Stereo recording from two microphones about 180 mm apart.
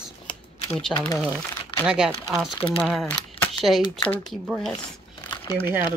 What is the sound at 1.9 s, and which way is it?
Speech, 5° right (ahead or behind).